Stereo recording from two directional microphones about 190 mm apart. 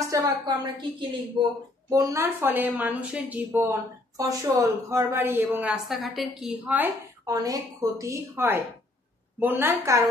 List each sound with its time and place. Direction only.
0.1 s a woman's voice: 20° right (ahead or behind)